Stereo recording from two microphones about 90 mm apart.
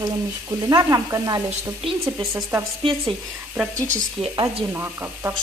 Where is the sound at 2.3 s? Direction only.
30° right (ahead or behind).